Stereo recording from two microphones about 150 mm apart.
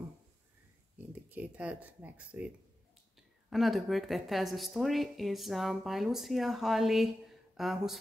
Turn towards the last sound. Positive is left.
turn(degrees=0)  # may be behind; listen again after turning